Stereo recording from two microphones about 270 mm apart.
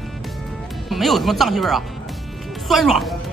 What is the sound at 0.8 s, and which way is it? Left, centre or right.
A woman's voice, centre.